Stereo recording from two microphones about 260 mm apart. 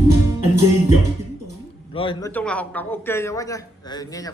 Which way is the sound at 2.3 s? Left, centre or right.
Centre.